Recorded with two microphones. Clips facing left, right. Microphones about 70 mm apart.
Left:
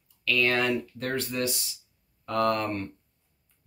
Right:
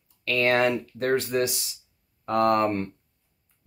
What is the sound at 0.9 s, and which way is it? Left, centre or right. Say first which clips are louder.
Speech: right 6 dB; right.